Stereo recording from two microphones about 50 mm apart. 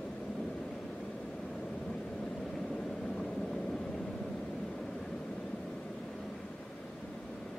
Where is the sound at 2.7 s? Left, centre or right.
Centre.